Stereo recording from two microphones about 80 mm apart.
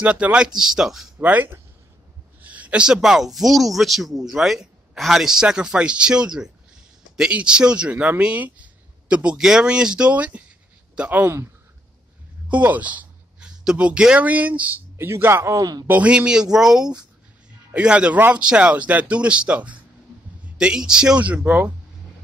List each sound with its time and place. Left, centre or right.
0.0 s speech: centre
1.2 s speech: right
12.4 s speech: centre
15.0 s a man's voice: right
15.9 s speech: centre